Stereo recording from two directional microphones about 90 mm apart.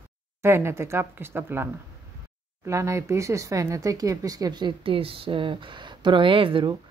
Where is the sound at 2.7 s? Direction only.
35° right (ahead or behind); by 4.7 s 50° right (ahead or behind).